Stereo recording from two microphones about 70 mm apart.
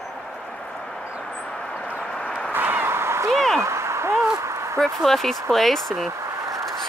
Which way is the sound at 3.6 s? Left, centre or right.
Right.